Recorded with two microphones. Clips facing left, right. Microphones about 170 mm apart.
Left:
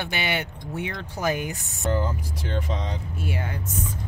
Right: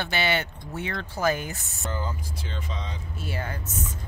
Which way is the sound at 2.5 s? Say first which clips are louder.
Left 8 dB; 65° left (ahead or behind).